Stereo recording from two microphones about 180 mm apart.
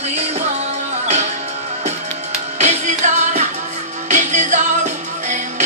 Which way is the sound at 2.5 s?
40° right (ahead or behind).